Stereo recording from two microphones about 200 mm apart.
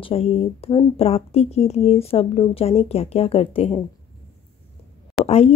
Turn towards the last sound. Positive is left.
turn(degrees=30)  # may be behind; listen again after turning